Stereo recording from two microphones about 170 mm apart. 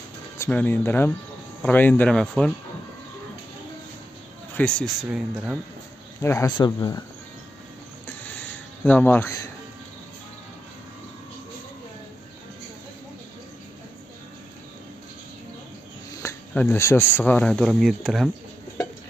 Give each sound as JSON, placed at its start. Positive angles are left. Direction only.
{"t": 0.4, "sound": "speech", "side_deg": 10}
{"t": 4.6, "sound": "speech", "side_deg": 5}
{"t": 6.2, "sound": "speech", "side_deg": 15}
{"t": 8.3, "sound": "a sound", "side_deg": 10}
{"t": 16.2, "sound": "speech", "side_deg": 15}